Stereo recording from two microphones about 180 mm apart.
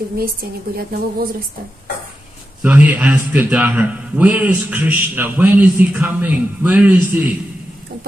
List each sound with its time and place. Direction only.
0.2 s a woman's voice: 55° right (ahead or behind)
2.6 s a man's voice: 10° right (ahead or behind)